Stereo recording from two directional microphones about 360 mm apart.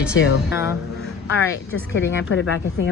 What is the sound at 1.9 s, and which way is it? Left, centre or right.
Speech, left.